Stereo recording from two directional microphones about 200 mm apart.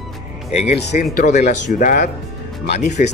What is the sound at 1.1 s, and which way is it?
Speech, 35° left (ahead or behind).